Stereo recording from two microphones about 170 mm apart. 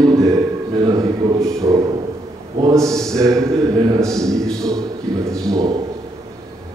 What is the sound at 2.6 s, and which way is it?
A man's voice, 20° right (ahead or behind).